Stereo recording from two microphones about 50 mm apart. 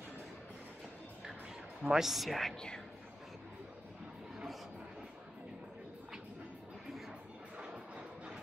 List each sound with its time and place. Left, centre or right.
1.8 s a man's voice: centre
7.5 s train: right